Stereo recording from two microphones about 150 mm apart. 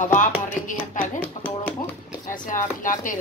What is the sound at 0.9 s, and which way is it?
Speech, 60° left (ahead or behind).